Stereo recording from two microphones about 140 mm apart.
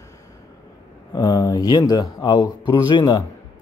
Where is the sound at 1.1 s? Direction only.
25° left (ahead or behind).